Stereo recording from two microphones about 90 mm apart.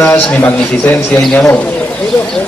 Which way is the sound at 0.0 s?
20° left (ahead or behind).